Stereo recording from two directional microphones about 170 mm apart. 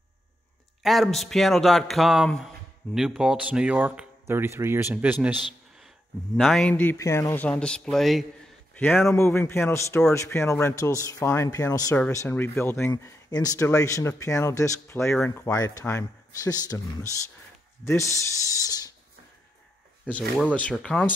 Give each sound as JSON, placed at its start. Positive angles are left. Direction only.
{"t": 0.8, "sound": "a man's voice", "side_deg": 0}
{"t": 6.3, "sound": "a man's voice", "side_deg": 0}
{"t": 8.7, "sound": "speech", "side_deg": 10}
{"t": 20.5, "sound": "speech", "side_deg": 5}